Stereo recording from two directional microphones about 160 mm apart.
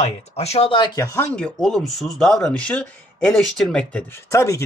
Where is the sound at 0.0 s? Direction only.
40° left (ahead or behind).